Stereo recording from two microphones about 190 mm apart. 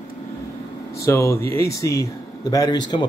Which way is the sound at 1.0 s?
15° left (ahead or behind).